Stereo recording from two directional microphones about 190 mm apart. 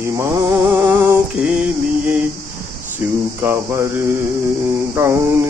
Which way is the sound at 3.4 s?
15° right (ahead or behind).